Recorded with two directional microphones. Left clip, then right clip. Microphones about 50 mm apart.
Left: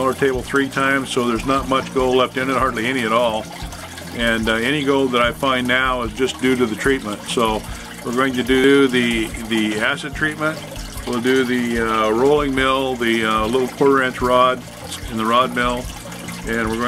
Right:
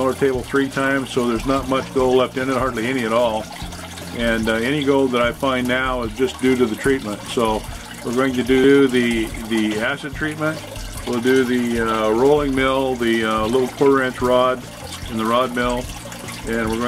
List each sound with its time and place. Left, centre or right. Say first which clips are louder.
0.0 s speech: left 1 dB; left
4.2 s speech: left 1 dB; left
11.2 s speech: even; left